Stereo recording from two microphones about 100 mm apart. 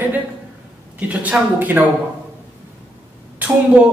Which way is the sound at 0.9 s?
15° right (ahead or behind).